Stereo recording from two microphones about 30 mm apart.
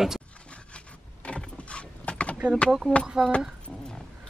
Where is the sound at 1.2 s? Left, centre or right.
Left.